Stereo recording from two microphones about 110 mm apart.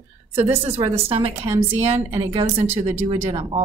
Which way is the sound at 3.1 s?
85° right.